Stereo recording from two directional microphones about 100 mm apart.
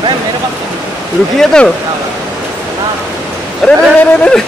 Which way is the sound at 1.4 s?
5° left (ahead or behind).